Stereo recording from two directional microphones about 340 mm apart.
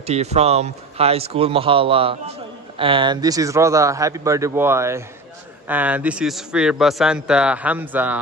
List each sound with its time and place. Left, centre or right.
0.0 s speech: centre